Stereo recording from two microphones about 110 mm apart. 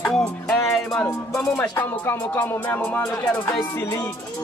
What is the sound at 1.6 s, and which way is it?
Speech, 20° left (ahead or behind).